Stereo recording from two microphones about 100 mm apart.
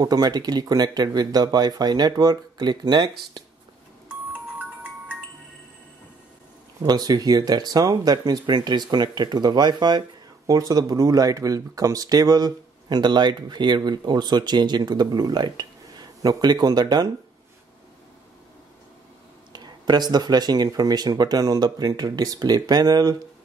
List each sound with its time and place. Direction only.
0.0 s speech: 40° right (ahead or behind)
6.8 s speech: 40° right (ahead or behind)
19.5 s speech: 45° right (ahead or behind)